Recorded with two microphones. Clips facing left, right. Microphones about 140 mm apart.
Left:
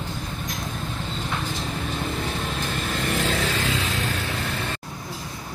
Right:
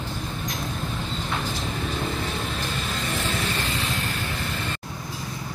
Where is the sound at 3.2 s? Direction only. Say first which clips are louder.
Left 3 dB; 90° left.